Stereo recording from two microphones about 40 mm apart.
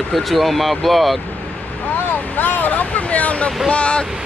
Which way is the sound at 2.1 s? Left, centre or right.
Left.